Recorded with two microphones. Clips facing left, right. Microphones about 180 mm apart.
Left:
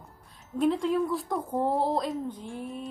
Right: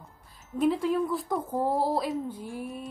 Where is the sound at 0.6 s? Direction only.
Centre (ahead or behind).